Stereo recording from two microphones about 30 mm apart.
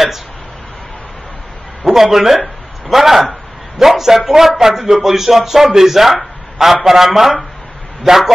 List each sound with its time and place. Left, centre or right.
1.9 s a man's voice: centre
8.1 s a man's voice: centre